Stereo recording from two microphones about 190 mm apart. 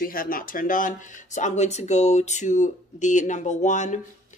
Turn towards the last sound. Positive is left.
turn(degrees=40)  # may be behind; listen again after turning